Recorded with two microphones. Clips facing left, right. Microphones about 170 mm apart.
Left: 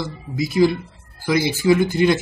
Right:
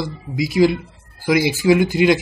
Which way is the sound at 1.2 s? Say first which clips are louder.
Right 2 dB; 15° right (ahead or behind).